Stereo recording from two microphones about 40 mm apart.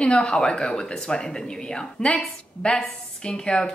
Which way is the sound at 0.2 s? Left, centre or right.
Centre.